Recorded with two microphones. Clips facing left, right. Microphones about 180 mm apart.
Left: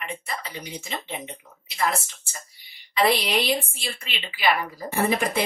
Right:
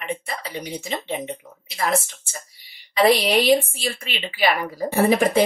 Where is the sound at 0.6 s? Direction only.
30° right (ahead or behind).